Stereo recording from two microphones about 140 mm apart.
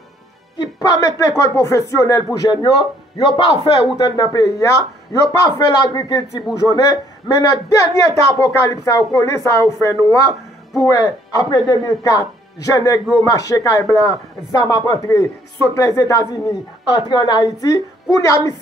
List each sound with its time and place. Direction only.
0.6 s speech: 25° left (ahead or behind)
2.3 s a man's voice: 35° left (ahead or behind)